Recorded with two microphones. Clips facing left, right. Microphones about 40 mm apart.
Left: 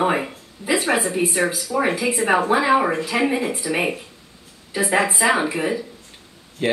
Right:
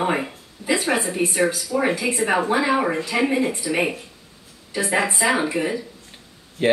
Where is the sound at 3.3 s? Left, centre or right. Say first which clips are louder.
Even; centre.